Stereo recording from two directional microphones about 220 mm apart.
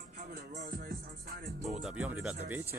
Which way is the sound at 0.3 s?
45° right (ahead or behind).